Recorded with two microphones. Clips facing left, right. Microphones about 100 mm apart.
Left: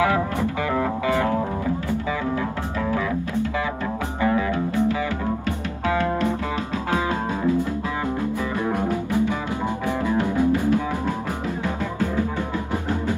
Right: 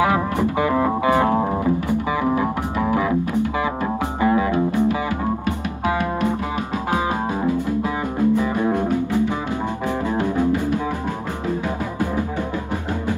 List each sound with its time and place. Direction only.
0.4 s music: 20° right (ahead or behind)
4.2 s music: 25° right (ahead or behind)
8.4 s music: 20° right (ahead or behind)
10.0 s music: 20° right (ahead or behind)